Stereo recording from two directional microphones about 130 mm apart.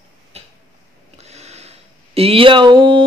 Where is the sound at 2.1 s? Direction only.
50° right (ahead or behind).